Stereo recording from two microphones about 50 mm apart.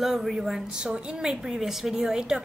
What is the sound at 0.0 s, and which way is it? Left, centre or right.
A woman's voice, centre.